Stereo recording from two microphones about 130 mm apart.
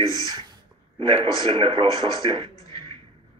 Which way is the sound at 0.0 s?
25° left (ahead or behind).